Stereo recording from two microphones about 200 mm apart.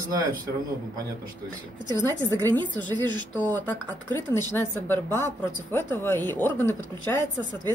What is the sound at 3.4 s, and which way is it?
Speech, 10° left (ahead or behind).